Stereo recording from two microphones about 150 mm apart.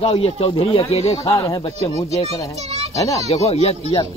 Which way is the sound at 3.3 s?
45° left (ahead or behind).